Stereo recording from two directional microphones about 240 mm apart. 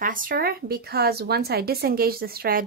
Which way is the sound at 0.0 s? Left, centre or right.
Right.